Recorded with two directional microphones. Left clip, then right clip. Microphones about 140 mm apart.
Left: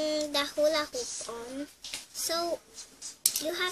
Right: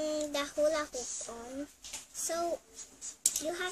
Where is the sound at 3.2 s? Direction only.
Centre (ahead or behind).